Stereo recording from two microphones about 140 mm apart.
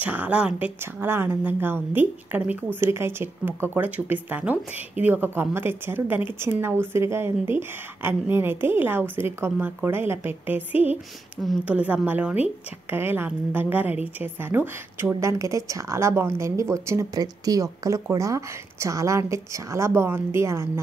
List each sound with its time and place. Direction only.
0.0 s a woman's voice: 10° right (ahead or behind)